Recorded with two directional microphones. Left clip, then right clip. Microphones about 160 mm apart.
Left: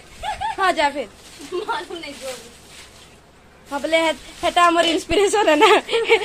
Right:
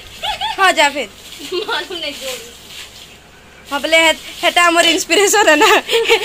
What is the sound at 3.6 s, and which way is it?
Speech, 5° left (ahead or behind).